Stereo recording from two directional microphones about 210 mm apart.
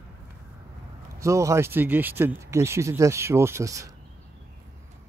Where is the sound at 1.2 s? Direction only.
15° right (ahead or behind).